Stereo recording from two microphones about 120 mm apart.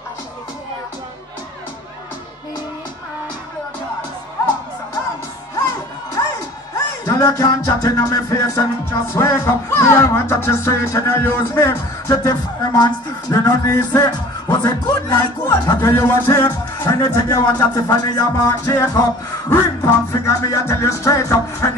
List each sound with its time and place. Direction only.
7.1 s music: 30° left (ahead or behind)
15.8 s music: 20° left (ahead or behind)
16.8 s music: 35° left (ahead or behind)